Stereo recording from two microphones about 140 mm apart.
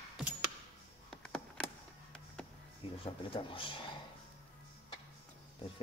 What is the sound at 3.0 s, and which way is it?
Speech, 40° left (ahead or behind).